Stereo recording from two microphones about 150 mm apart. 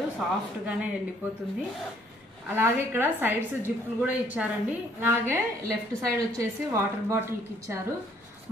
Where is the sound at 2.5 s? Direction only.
15° right (ahead or behind).